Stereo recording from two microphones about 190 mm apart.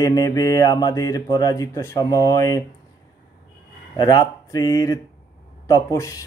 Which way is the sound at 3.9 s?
20° left (ahead or behind).